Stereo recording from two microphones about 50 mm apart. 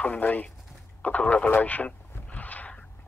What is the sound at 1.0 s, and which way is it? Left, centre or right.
Speech, left.